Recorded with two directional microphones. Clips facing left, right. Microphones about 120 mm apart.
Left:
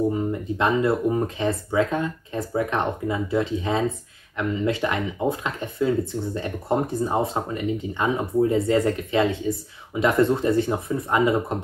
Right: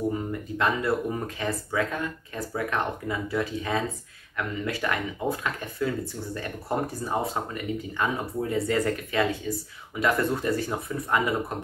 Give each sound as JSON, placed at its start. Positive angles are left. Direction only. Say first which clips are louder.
{"t": 0.3, "sound": "speech", "louder": "left 4 dB", "side_deg": 25}